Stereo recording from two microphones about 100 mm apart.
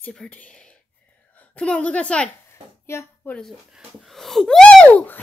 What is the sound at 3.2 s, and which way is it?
Speech, 10° left (ahead or behind).